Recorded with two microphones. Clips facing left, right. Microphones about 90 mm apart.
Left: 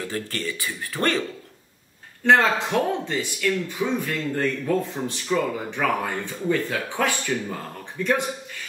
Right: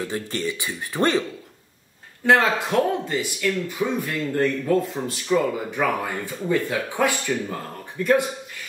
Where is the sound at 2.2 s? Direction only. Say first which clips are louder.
Even; 5° right (ahead or behind).